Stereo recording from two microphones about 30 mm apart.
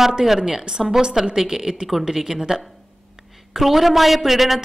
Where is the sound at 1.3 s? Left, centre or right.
Centre.